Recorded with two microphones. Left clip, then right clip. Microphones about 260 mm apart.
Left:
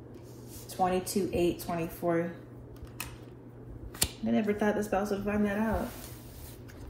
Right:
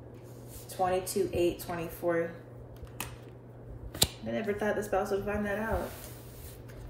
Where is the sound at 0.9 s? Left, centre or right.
Left.